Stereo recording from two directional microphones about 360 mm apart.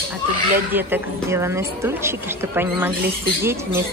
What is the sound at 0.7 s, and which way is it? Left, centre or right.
A woman's voice, centre.